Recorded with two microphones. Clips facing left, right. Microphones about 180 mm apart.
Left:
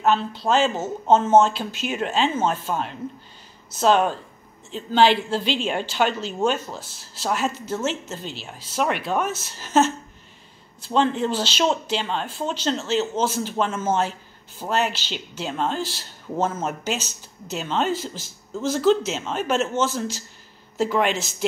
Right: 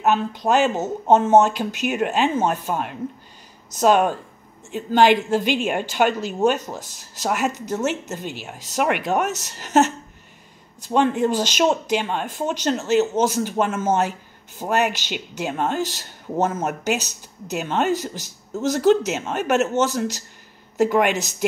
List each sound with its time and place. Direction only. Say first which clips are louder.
0.0 s speech: right 1 dB; 15° right (ahead or behind)